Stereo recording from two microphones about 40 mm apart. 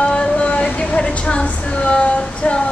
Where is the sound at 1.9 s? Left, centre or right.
Left.